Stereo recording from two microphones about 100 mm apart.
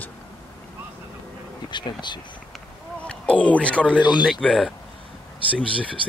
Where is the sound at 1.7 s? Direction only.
50° left (ahead or behind).